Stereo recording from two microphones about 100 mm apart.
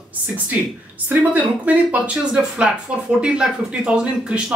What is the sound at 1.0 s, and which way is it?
Speech, 15° right (ahead or behind).